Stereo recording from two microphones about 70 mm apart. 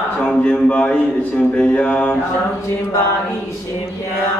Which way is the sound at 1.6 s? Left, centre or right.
Centre.